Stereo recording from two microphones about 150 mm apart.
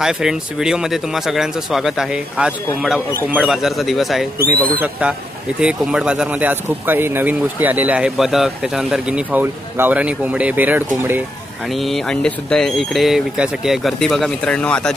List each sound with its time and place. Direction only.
0.0 s speech: 5° right (ahead or behind)
4.4 s speech: 80° right
4.7 s a man's voice: 10° right (ahead or behind)
11.7 s speech: centre (ahead or behind)